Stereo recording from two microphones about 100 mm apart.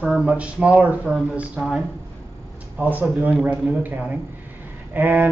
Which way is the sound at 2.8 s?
15° right (ahead or behind).